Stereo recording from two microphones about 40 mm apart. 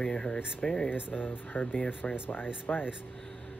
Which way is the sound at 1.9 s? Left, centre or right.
Left.